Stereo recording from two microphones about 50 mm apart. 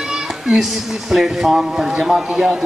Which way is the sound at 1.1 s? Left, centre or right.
Centre.